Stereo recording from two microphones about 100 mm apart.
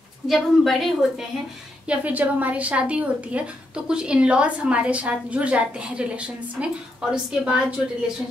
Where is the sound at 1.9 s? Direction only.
15° right (ahead or behind).